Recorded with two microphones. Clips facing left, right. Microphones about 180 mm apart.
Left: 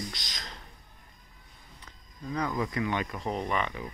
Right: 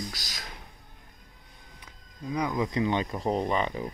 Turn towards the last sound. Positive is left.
turn(degrees=-30)  # may be behind; listen again after turning